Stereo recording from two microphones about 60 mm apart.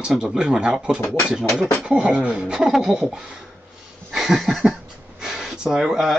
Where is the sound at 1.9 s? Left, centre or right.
Centre.